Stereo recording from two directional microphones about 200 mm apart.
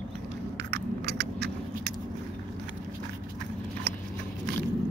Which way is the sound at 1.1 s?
55° right (ahead or behind).